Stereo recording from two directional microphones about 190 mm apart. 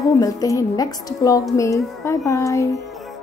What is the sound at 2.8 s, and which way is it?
Music, centre (ahead or behind).